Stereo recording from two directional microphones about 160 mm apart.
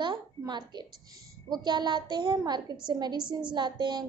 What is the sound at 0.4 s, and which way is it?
A woman's voice, 25° right (ahead or behind).